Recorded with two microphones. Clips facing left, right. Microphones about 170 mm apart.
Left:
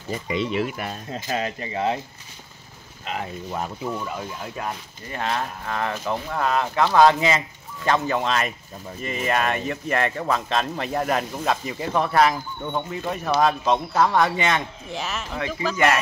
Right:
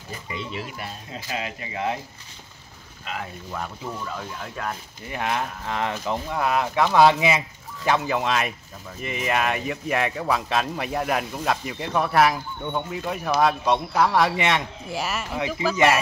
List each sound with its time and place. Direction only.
0.6 s speech: 55° left (ahead or behind); by 2.0 s 30° left (ahead or behind)
3.1 s speech: 30° left (ahead or behind); by 4.7 s 10° left (ahead or behind)
5.0 s speech: 15° right (ahead or behind)